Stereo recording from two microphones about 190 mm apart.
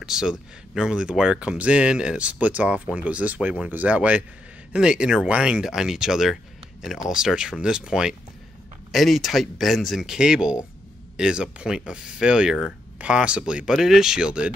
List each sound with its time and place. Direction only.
0.0 s speech: 5° right (ahead or behind)